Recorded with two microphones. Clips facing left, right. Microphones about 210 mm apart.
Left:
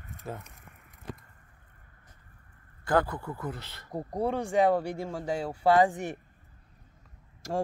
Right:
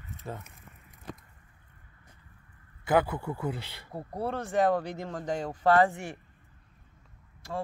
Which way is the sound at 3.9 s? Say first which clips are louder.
Left 4 dB; 15° left (ahead or behind).